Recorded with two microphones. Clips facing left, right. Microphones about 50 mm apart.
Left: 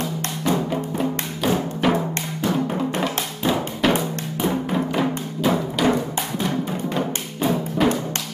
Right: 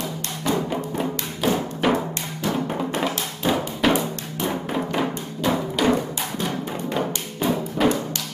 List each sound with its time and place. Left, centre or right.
0.7 s music: centre